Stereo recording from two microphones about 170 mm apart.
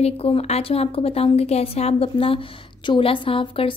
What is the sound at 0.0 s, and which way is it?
A woman's voice, 35° left (ahead or behind).